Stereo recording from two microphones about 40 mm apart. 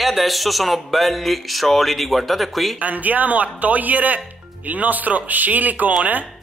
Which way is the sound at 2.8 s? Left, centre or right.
Right.